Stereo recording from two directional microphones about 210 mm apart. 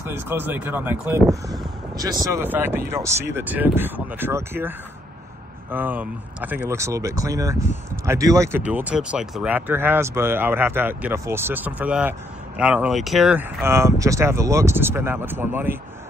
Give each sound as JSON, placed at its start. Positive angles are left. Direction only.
{"t": 0.0, "sound": "speech", "side_deg": -10}